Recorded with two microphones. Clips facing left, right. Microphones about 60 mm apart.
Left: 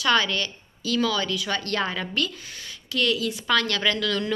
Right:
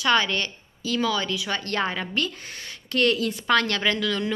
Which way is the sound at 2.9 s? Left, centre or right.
Right.